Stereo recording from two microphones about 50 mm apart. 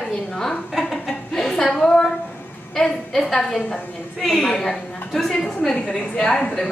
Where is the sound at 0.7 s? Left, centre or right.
Centre.